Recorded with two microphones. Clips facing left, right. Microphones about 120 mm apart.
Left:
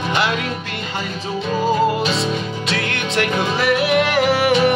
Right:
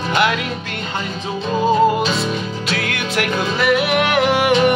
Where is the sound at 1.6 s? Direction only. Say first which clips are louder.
Right 3 dB; 25° right (ahead or behind).